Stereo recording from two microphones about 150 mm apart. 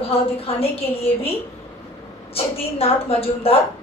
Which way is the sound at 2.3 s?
40° left (ahead or behind).